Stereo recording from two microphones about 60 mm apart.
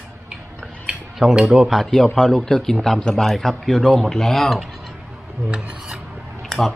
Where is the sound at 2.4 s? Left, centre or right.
Centre.